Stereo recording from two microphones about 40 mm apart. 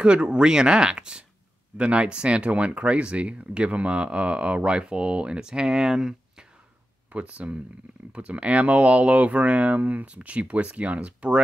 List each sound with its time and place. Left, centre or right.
0.0 s speech: right
7.1 s speech: right